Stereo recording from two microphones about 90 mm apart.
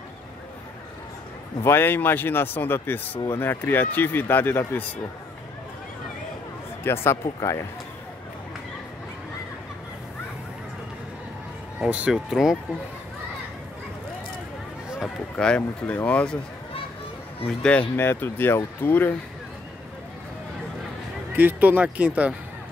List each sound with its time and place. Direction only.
1.6 s speech: 25° left (ahead or behind)
6.8 s speech: 25° left (ahead or behind)
12.1 s speech: 5° right (ahead or behind)
15.0 s speech: 10° left (ahead or behind)
17.6 s speech: 15° left (ahead or behind)
17.9 s speech: 25° left (ahead or behind)
21.4 s speech: 20° right (ahead or behind)